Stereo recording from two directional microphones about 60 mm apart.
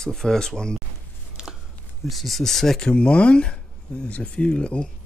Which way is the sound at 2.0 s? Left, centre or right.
Centre.